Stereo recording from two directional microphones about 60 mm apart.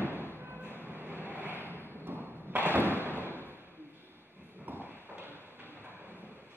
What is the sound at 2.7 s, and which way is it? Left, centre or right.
Thump, right.